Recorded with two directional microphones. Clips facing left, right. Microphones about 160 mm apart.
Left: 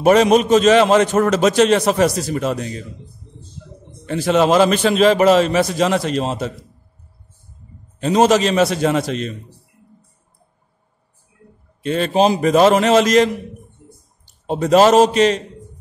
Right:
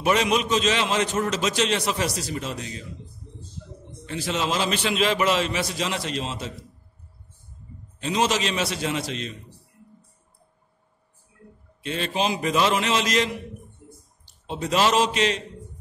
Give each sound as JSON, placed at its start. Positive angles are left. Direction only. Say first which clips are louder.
{"t": 0.0, "sound": "a man's voice", "louder": "left 10 dB", "side_deg": 45}
{"t": 4.0, "sound": "a man's voice", "louder": "left 12 dB", "side_deg": 55}
{"t": 8.0, "sound": "a man's voice", "louder": "left 10 dB", "side_deg": 45}
{"t": 11.8, "sound": "a man's voice", "louder": "left 10 dB", "side_deg": 45}